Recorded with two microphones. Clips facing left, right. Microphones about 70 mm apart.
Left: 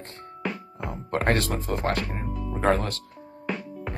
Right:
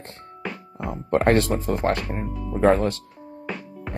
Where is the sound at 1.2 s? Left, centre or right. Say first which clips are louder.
Right 5 dB; right.